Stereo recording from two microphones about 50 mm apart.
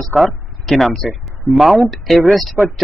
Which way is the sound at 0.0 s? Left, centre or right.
Centre.